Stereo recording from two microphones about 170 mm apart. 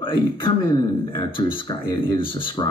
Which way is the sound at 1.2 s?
30° left (ahead or behind).